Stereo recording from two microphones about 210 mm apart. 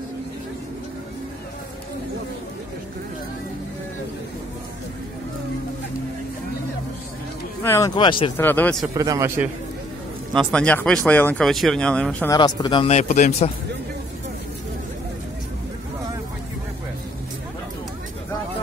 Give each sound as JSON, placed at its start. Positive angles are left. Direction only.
{"t": 7.6, "sound": "speech", "side_deg": 15}
{"t": 8.4, "sound": "speech", "side_deg": 10}
{"t": 8.9, "sound": "a man's voice", "side_deg": -15}
{"t": 10.3, "sound": "speech", "side_deg": 5}
{"t": 12.3, "sound": "speech", "side_deg": 20}